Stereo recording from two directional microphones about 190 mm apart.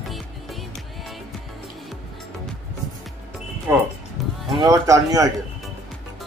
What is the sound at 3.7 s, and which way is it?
Speech, 10° right (ahead or behind).